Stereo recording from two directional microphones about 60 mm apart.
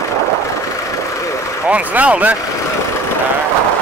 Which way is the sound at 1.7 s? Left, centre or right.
Right.